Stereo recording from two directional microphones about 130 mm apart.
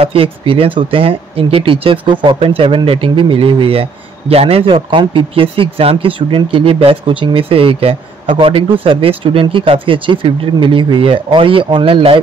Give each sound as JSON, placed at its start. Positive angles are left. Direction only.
{"t": 0.0, "sound": "speech", "side_deg": -45}